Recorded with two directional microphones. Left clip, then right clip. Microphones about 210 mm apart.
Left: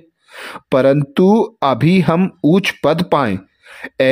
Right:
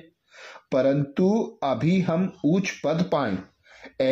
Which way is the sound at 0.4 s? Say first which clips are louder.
Left 9 dB; 40° left (ahead or behind).